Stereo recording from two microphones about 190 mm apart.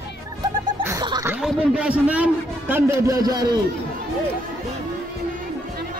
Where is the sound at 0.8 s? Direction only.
20° right (ahead or behind).